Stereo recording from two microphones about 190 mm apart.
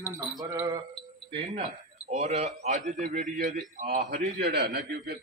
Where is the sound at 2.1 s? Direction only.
35° right (ahead or behind).